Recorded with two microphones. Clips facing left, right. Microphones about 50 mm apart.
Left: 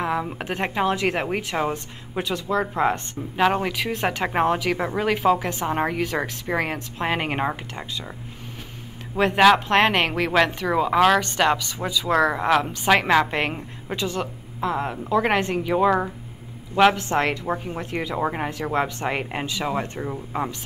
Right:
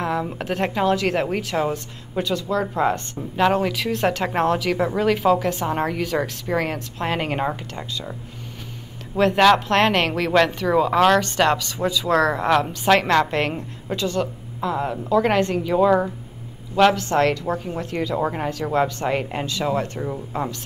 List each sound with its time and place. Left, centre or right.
0.0 s a woman's voice: centre
3.3 s a woman's voice: centre
9.1 s a woman's voice: centre